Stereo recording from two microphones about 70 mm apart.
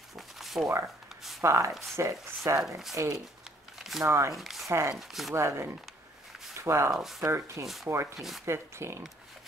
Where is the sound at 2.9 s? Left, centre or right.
Right.